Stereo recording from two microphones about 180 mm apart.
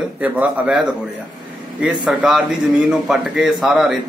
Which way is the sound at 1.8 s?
5° right (ahead or behind).